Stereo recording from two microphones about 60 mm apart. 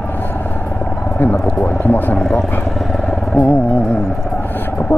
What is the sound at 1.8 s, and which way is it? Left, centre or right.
Speech, left.